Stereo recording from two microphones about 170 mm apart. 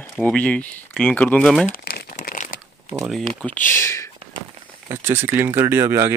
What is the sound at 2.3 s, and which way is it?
Crumpling, 55° left (ahead or behind).